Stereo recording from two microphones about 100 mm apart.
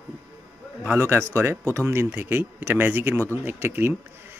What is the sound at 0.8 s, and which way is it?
Speech, 20° right (ahead or behind).